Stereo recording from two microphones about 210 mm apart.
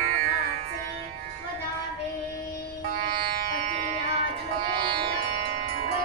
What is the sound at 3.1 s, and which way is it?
Music, 45° right (ahead or behind).